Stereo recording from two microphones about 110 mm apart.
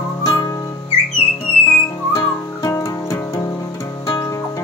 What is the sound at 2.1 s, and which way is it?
Music, 30° left (ahead or behind).